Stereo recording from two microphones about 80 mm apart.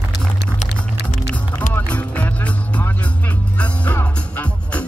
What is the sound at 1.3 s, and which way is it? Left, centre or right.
Music, centre.